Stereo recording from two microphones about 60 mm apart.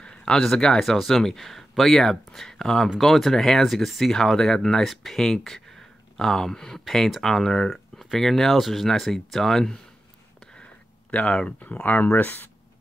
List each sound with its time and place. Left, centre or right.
0.0 s speech: centre
10.4 s a sound: centre
12.2 s speech: left